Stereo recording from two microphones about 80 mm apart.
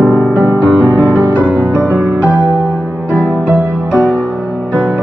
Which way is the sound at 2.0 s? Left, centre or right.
Centre.